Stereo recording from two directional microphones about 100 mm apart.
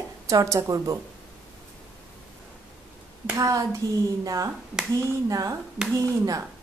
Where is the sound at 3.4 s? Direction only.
30° right (ahead or behind).